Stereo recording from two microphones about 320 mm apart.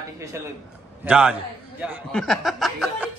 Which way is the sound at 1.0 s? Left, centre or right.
Centre.